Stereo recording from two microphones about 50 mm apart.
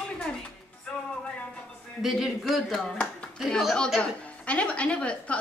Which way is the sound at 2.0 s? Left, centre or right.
Centre.